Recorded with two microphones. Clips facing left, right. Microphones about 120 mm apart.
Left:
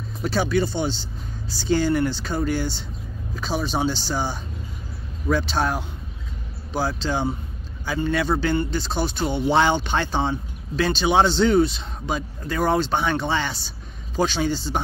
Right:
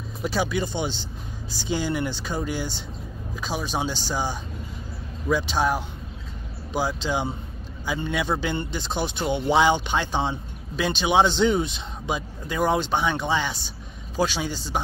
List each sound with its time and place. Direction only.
0.2 s speech: 10° right (ahead or behind)